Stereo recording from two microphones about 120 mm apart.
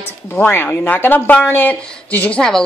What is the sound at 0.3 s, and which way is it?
Speech, 15° left (ahead or behind).